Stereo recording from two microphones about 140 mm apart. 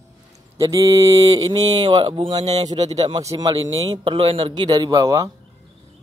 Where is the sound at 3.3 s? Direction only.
35° right (ahead or behind).